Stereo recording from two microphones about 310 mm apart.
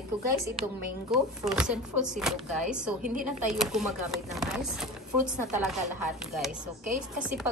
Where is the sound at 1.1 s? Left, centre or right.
Centre.